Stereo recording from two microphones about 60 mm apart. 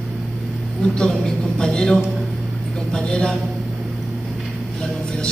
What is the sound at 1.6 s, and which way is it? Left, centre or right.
A man's voice, centre.